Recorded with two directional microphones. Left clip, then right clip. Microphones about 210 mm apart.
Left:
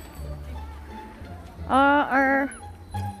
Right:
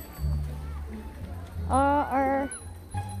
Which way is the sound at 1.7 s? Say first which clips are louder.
Left 5 dB; 30° left (ahead or behind).